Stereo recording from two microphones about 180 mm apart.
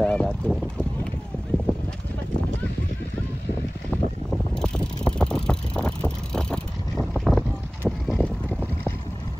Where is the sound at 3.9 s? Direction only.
5° left (ahead or behind).